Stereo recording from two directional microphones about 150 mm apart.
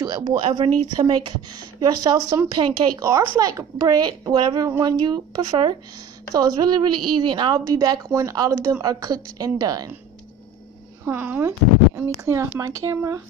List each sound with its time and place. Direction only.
0.0 s speech: 25° right (ahead or behind)
11.1 s speech: 15° right (ahead or behind)